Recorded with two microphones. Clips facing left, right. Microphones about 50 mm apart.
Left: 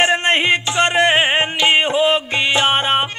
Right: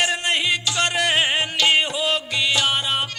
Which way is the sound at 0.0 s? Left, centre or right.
Left.